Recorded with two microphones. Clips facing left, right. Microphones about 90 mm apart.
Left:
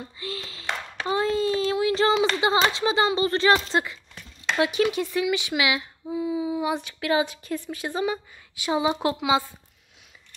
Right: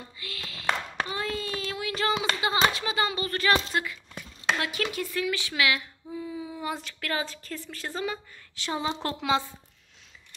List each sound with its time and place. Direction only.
0.2 s a woman's voice: 30° left (ahead or behind); by 9.4 s 10° left (ahead or behind)